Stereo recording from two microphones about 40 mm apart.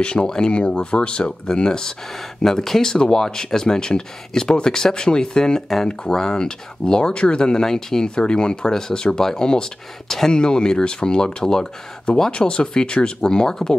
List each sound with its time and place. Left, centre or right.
0.0 s speech: left